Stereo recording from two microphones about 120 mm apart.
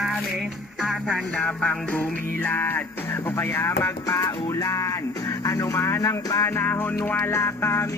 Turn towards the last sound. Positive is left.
turn(degrees=25)  # may be behind; listen again after turning